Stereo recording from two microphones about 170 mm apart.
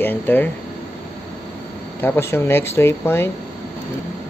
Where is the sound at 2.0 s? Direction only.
15° left (ahead or behind).